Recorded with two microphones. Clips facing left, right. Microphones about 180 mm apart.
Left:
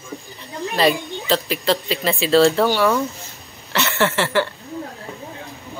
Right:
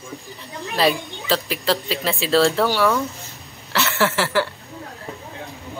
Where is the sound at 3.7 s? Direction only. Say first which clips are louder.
Left 1 dB; centre (ahead or behind).